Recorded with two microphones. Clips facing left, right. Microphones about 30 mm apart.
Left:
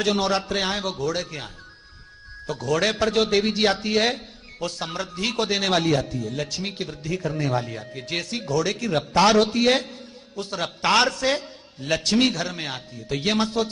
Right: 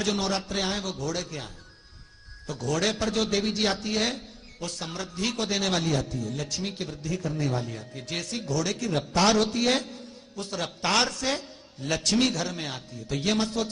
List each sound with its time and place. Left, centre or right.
0.0 s a man's voice: left